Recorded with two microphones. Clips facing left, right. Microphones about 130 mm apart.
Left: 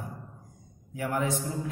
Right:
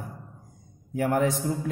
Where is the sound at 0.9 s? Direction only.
55° right (ahead or behind).